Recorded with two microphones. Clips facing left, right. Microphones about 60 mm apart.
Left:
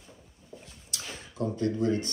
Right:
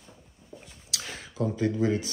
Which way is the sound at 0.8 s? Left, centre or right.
Right.